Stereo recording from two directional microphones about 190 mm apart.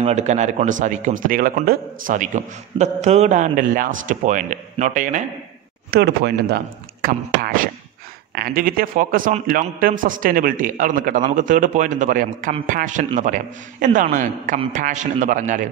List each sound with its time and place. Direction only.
0.0 s a man's voice: 35° right (ahead or behind)
5.9 s a man's voice: 55° right (ahead or behind)